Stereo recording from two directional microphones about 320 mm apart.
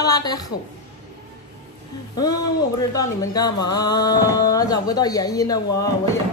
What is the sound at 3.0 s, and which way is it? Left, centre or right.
Speech, centre.